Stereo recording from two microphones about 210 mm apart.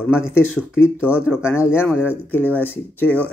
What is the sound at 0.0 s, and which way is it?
Speech, 10° left (ahead or behind).